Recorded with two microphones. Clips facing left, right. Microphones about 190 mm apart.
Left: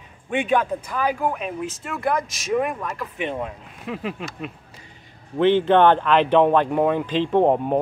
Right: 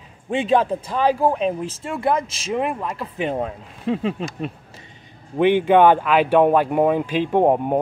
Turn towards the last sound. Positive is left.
turn(degrees=-15)  # may be behind; listen again after turning